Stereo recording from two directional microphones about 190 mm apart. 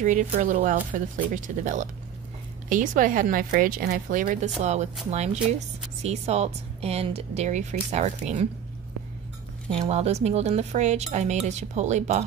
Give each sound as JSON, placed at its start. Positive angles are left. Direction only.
{"t": 0.0, "sound": "a woman's voice", "side_deg": -40}
{"t": 9.7, "sound": "speech", "side_deg": -30}